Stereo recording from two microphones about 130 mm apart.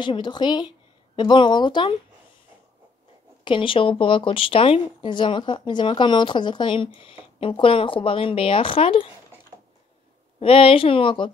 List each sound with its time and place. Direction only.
0.0 s a woman's voice: 35° left (ahead or behind)
3.4 s speech: 40° left (ahead or behind)
10.4 s a woman's voice: 45° left (ahead or behind)